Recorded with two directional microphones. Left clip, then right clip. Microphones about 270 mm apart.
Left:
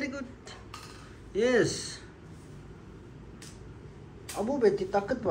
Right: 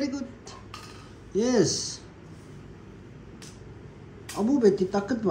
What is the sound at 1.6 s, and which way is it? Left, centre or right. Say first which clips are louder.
Speech: right 3 dB; centre.